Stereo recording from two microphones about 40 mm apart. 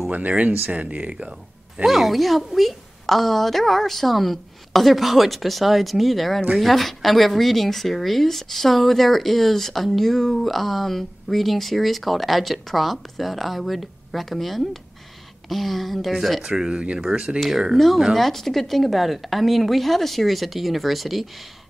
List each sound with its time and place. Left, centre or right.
0.1 s speech: right
1.9 s speech: centre
16.4 s speech: centre
17.7 s speech: centre